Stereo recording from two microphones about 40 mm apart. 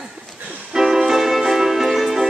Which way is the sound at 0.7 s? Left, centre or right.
Centre.